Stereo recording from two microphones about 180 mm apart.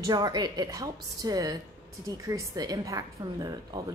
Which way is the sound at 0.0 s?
20° right (ahead or behind).